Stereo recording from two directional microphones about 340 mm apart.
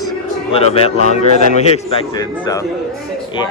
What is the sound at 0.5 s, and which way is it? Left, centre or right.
Speech, centre.